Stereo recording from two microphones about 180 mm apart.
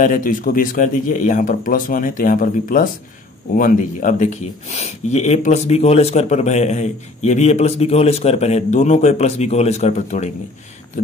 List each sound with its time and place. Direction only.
0.0 s speech: 45° left (ahead or behind)